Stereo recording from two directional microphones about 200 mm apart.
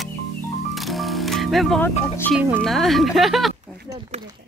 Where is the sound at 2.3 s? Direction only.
10° right (ahead or behind).